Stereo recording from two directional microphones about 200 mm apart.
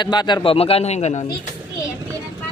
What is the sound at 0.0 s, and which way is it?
A man's voice, 20° left (ahead or behind).